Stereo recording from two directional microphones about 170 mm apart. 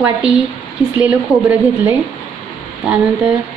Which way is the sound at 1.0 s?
10° right (ahead or behind).